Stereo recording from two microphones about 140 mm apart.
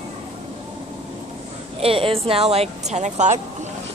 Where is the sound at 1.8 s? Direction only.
40° right (ahead or behind).